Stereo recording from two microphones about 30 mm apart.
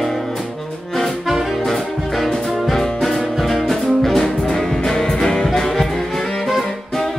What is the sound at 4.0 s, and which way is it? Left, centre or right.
Music, centre.